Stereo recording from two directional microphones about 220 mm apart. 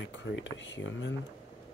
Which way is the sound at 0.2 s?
55° left (ahead or behind).